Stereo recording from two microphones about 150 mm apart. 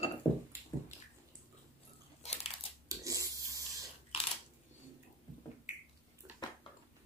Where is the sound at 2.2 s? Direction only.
45° left (ahead or behind).